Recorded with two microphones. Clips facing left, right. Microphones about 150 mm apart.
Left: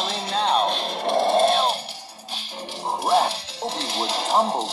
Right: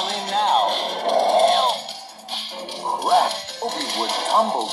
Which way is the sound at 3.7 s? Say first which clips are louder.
Even; 65° right (ahead or behind).